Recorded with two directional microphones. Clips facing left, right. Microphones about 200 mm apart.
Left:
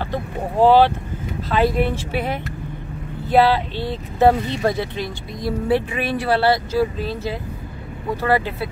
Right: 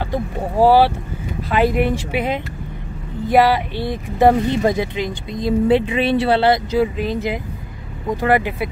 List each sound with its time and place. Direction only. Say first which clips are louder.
0.0 s speech: right 2 dB; 10° right (ahead or behind)